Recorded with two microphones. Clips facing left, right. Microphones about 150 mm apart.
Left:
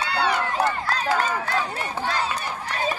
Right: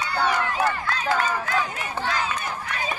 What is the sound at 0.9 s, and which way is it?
Run, 35° left (ahead or behind).